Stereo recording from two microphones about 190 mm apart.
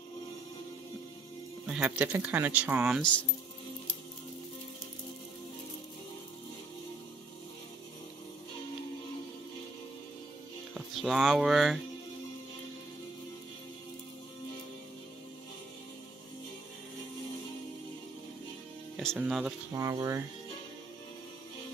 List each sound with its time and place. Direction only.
1.7 s speech: 5° right (ahead or behind)
10.7 s speech: centre (ahead or behind)
18.9 s speech: centre (ahead or behind)
19.7 s speech: 15° right (ahead or behind)